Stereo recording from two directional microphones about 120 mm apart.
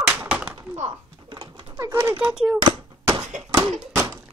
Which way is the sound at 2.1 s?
10° right (ahead or behind).